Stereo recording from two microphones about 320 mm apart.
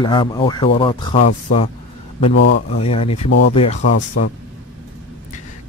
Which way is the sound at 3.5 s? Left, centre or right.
Centre.